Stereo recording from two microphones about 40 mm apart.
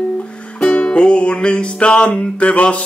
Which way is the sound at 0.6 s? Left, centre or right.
Left.